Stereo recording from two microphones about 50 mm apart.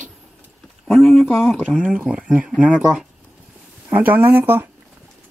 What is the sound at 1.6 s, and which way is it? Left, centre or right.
Speech, centre.